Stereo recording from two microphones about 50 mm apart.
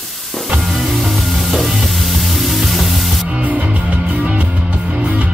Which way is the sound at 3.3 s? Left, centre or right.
Right.